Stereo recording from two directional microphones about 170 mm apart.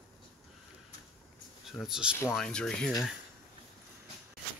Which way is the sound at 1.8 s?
5° right (ahead or behind).